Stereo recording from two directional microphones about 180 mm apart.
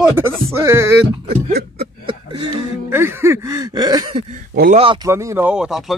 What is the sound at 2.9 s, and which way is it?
A man's voice, 15° right (ahead or behind).